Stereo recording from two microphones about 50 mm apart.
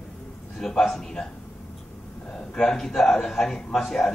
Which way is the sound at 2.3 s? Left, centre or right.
Centre.